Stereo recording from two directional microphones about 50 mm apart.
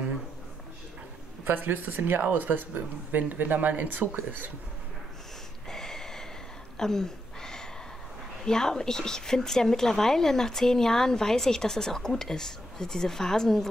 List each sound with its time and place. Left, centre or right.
1.4 s speech: right
5.7 s snort: centre
6.8 s a sound: centre
8.5 s a woman's voice: centre